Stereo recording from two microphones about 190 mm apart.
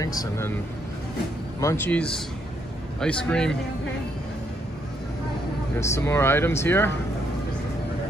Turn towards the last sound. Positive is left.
turn(degrees=10)  # may be behind; listen again after turning